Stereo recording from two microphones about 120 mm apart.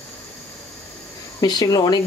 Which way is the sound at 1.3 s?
35° left (ahead or behind).